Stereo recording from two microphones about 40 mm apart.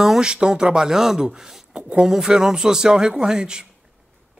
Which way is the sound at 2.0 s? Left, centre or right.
Centre.